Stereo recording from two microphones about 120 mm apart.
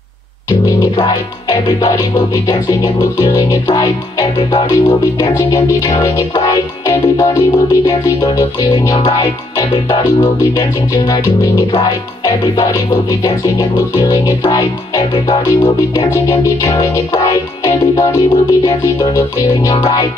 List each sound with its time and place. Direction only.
0.5 s music: 35° left (ahead or behind)